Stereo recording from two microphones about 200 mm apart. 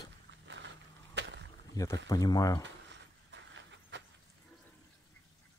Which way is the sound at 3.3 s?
65° right (ahead or behind).